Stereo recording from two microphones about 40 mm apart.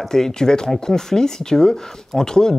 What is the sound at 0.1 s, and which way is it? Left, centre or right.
Speech, centre.